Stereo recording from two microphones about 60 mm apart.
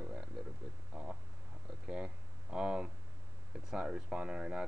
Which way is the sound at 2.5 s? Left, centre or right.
Centre.